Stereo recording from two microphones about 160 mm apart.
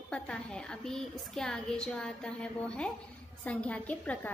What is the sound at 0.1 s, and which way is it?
A woman's voice, 5° left (ahead or behind).